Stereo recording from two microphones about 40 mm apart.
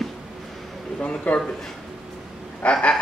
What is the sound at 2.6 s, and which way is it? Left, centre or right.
Speech, left.